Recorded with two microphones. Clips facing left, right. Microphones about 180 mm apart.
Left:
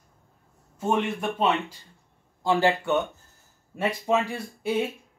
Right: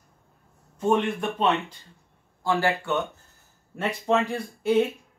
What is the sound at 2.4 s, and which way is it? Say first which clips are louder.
Speech: left 2 dB; 20° left (ahead or behind).